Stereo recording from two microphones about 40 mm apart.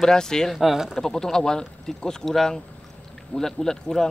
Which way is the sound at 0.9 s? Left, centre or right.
Centre.